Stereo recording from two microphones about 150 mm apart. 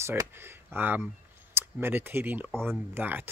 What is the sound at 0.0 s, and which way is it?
Speech, 20° right (ahead or behind).